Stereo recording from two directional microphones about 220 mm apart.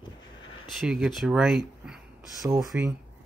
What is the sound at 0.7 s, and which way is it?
Speech, 5° right (ahead or behind).